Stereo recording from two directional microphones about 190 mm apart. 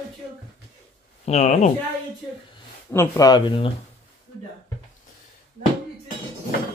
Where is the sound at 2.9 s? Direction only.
20° left (ahead or behind).